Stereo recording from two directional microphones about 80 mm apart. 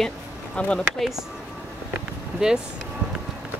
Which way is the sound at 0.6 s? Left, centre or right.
Centre.